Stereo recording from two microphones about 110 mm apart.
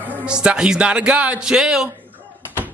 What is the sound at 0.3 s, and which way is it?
Speech, 10° right (ahead or behind).